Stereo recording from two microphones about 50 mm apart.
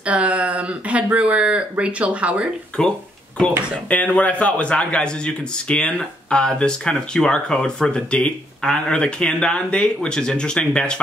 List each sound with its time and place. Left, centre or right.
0.0 s speech: right
2.8 s speech: centre
3.9 s a man's voice: left